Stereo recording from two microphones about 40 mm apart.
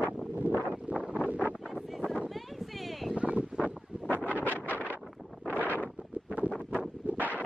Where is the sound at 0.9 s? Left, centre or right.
Right.